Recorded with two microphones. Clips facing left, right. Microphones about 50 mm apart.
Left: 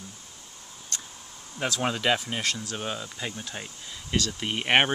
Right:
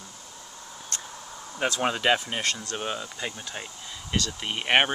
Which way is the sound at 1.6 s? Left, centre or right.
Centre.